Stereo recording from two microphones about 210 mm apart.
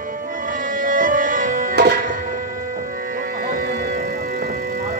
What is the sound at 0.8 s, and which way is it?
Music, 40° right (ahead or behind).